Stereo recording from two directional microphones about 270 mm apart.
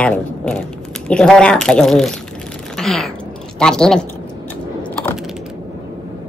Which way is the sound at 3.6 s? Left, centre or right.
Centre.